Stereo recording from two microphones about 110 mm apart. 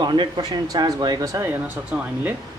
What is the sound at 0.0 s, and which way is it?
Speech, 40° right (ahead or behind).